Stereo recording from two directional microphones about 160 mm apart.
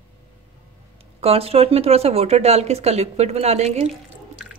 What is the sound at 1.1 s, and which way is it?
Speech, 40° right (ahead or behind).